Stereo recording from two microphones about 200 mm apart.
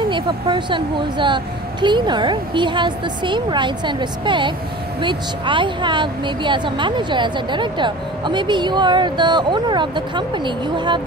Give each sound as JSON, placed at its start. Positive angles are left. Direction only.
{"t": 0.1, "sound": "speech", "side_deg": -25}